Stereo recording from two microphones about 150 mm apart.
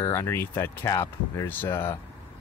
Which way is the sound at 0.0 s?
15° left (ahead or behind).